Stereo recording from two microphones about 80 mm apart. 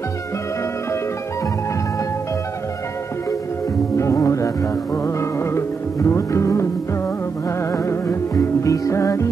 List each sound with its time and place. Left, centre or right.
3.9 s music: left
7.7 s music: left